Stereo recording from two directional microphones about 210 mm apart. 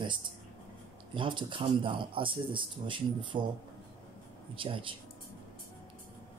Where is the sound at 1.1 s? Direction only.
25° right (ahead or behind).